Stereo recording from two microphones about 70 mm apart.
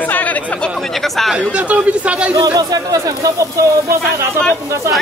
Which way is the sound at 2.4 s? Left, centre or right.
Right.